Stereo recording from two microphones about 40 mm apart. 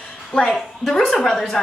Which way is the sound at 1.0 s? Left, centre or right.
Centre.